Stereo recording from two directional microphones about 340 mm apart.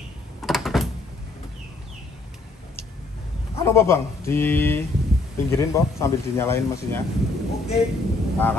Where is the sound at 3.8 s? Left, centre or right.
Centre.